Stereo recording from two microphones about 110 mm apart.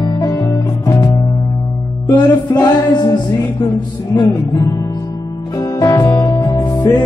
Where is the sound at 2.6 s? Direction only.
40° left (ahead or behind).